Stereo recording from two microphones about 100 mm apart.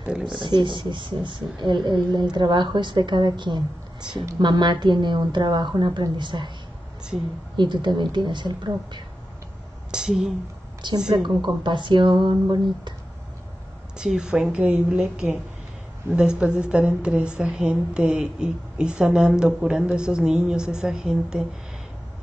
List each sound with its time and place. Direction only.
0.0 s a sound: 10° right (ahead or behind)
0.3 s a woman's voice: 50° right (ahead or behind)
7.5 s a woman's voice: 50° right (ahead or behind)
9.8 s speech: 5° right (ahead or behind)
10.8 s a woman's voice: 50° right (ahead or behind)
13.9 s a woman's voice: 10° right (ahead or behind)